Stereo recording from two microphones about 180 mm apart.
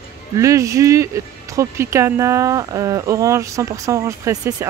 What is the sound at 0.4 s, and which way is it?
Speech, 15° right (ahead or behind).